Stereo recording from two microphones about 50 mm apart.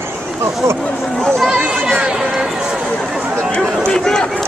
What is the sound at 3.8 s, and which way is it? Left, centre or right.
Run, centre.